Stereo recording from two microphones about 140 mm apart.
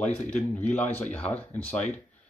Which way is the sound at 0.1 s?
10° left (ahead or behind).